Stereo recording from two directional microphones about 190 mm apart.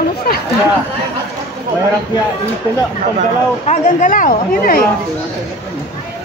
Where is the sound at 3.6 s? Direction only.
40° left (ahead or behind).